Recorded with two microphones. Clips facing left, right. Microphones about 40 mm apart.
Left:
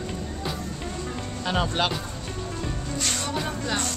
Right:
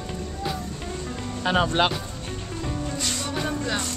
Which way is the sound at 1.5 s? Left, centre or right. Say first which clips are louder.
Right 4 dB; centre.